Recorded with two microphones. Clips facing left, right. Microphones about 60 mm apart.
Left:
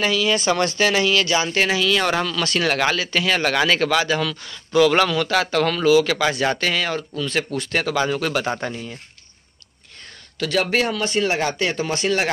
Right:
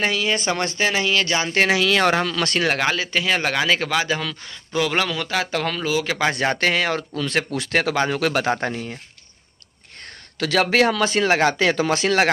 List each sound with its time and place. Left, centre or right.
0.0 s speech: right; by 1.2 s centre
1.2 s speech: right
1.7 s speech: right
2.6 s speech: right
4.9 s speech: centre
5.9 s speech: centre
6.4 s speech: right
10.4 s speech: right